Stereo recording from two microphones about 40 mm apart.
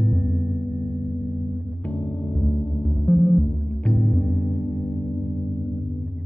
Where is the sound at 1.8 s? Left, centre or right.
Left.